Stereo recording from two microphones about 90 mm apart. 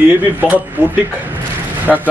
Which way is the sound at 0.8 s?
20° right (ahead or behind).